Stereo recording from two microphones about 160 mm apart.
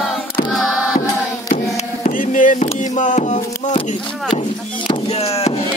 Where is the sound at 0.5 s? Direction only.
Centre (ahead or behind).